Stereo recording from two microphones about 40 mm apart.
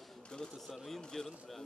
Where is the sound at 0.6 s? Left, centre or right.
Centre.